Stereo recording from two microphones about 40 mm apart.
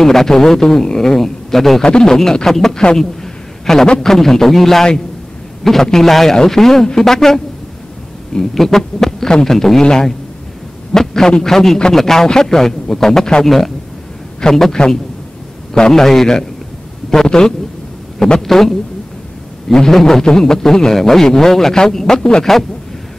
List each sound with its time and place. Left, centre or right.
0.0 s a man's voice: centre
1.8 s a man's voice: centre
3.0 s a sound: centre
4.0 s a man's voice: centre
8.5 s a man's voice: centre
14.4 s a man's voice: centre
19.9 s a man's voice: centre
22.4 s a man's voice: centre